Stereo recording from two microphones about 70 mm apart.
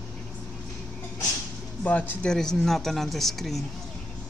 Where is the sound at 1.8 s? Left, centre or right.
Left.